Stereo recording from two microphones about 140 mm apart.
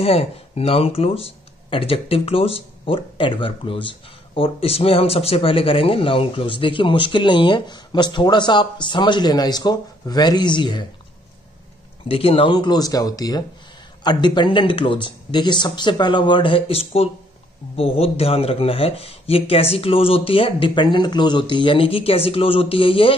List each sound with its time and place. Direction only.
0.0 s speech: 45° left (ahead or behind)
12.1 s speech: 40° left (ahead or behind)